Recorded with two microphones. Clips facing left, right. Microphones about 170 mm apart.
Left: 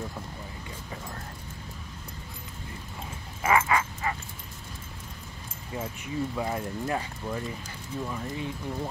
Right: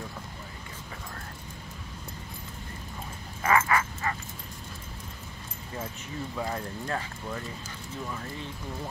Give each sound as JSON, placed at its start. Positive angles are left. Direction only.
{"t": 3.4, "sound": "bow-wow", "side_deg": 15}
{"t": 6.3, "sound": "speech", "side_deg": 15}